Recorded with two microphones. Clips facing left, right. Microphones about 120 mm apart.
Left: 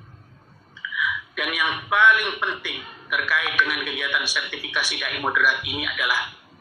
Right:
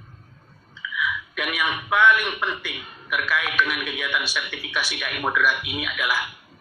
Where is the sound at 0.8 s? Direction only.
Centre (ahead or behind).